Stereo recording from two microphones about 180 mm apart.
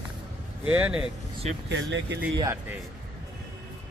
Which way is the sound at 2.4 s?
15° right (ahead or behind).